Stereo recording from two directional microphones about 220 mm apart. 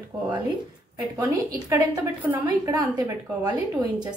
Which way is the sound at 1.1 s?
15° right (ahead or behind).